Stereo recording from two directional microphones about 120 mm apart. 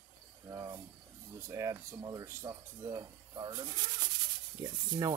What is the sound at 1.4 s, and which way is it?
Speech, 25° right (ahead or behind).